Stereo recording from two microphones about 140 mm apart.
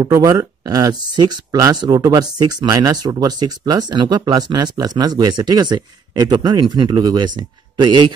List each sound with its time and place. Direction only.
0.0 s speech: 25° right (ahead or behind)